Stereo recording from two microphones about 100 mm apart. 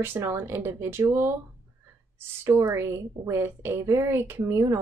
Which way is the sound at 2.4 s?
30° right (ahead or behind).